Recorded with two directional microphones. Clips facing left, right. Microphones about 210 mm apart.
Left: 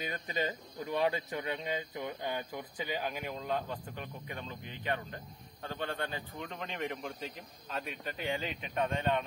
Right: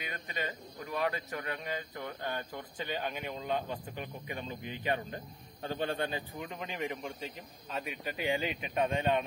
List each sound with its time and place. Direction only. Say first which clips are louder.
0.0 s a man's voice: left 4 dB; 35° left (ahead or behind)
0.7 s speech: left 2 dB; 20° left (ahead or behind); by 6.2 s 15° right (ahead or behind)
6.3 s speech: right 1 dB; 5° right (ahead or behind)